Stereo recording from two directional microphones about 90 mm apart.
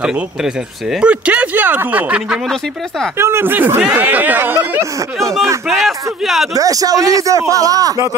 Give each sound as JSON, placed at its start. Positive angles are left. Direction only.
{"t": 0.0, "sound": "speech", "side_deg": -10}
{"t": 3.2, "sound": "speech", "side_deg": -30}
{"t": 5.7, "sound": "speech", "side_deg": 0}
{"t": 6.5, "sound": "a man's voice", "side_deg": -40}